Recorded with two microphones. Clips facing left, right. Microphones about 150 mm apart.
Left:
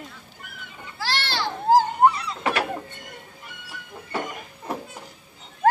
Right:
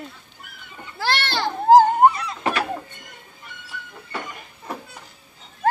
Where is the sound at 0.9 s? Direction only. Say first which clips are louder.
Right 4 dB; 55° right (ahead or behind).